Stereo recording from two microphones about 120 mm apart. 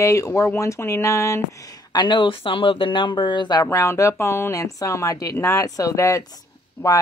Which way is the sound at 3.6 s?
25° left (ahead or behind).